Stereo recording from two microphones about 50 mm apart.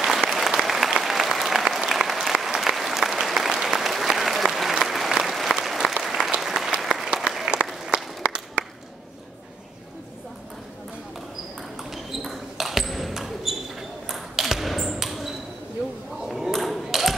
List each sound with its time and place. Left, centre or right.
0.0 s applause: centre
7.9 s a sound: right
11.7 s ping: centre